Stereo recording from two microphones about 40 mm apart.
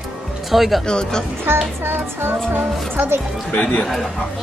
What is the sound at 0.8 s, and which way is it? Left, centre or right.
Speech, left.